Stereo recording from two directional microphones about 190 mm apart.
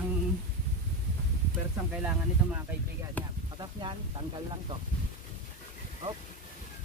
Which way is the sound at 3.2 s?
10° left (ahead or behind).